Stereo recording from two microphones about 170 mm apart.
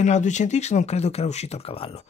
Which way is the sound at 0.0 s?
45° left (ahead or behind).